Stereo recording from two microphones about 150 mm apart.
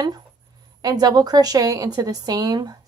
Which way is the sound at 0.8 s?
25° right (ahead or behind).